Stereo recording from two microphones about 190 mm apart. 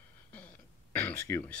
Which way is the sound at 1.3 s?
10° left (ahead or behind).